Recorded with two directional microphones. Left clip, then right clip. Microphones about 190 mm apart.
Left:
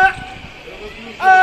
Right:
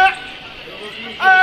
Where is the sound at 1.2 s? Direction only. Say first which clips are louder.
Left 1 dB; 40° left (ahead or behind).